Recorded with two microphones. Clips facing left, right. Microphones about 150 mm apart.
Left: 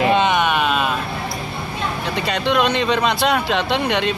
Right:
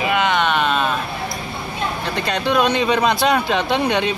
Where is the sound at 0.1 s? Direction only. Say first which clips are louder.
Left 1 dB; 20° left (ahead or behind).